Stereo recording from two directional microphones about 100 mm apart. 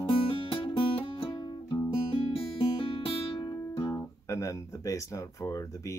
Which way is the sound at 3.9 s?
30° left (ahead or behind).